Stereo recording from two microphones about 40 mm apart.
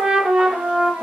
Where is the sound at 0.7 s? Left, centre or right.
Centre.